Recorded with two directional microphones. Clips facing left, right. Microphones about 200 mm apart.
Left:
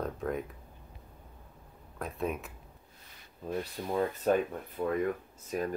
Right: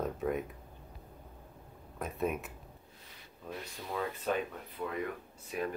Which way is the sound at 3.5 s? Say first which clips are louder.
Left 7 dB; 45° left (ahead or behind).